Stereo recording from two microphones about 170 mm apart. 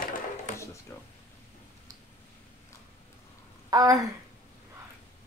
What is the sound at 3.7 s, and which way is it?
Speech, 20° right (ahead or behind).